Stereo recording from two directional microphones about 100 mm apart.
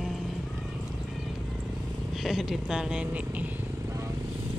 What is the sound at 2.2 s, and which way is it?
Speech, centre (ahead or behind).